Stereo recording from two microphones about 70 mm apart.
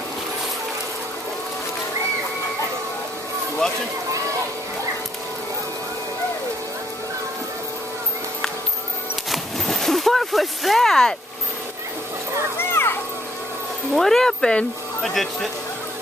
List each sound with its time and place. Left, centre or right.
9.3 s a sound: centre
12.5 s children playing: left
13.9 s speech: centre